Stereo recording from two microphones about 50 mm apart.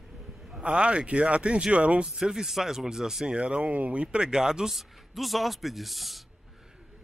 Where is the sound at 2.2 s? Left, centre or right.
Centre; by 4.2 s right.